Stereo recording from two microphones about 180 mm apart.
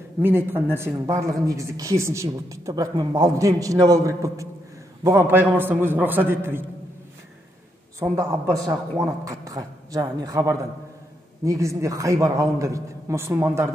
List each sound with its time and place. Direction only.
0.2 s speech: 10° right (ahead or behind)
8.0 s a woman's voice: 20° right (ahead or behind)